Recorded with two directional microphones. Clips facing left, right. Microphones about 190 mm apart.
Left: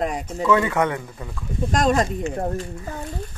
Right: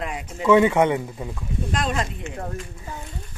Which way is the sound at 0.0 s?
40° left (ahead or behind).